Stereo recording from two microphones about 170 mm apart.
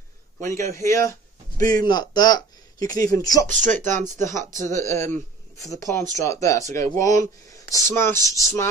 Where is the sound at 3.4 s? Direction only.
45° right (ahead or behind).